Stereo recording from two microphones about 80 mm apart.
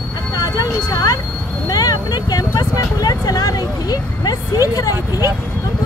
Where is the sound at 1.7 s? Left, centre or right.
Left.